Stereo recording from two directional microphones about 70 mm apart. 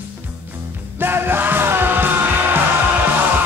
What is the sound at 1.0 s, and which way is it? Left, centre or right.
Music, right.